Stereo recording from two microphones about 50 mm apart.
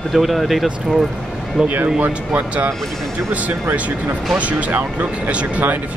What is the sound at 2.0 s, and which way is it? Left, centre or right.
Speech, right.